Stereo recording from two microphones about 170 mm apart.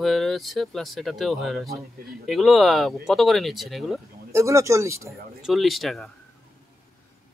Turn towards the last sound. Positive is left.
turn(degrees=0)  # may be behind; listen again after turning